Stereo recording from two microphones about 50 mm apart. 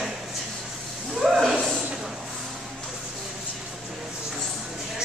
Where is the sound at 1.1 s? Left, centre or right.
Centre.